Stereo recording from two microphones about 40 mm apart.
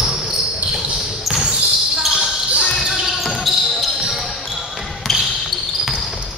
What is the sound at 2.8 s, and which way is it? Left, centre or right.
Basketball bounce, centre.